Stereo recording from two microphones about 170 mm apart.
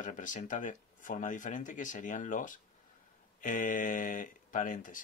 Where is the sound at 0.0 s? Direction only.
50° left (ahead or behind).